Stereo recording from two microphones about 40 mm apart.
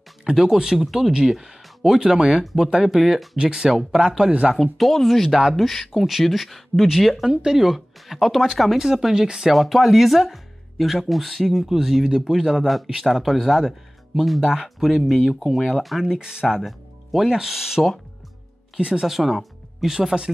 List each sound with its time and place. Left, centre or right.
0.2 s speech: centre
3.3 s speech: centre
4.7 s speech: centre
7.2 s speech: centre
7.6 s speech: centre
9.5 s speech: centre
14.4 s speech: centre
16.0 s speech: centre
16.6 s music: centre
17.3 s speech: centre
18.9 s speech: centre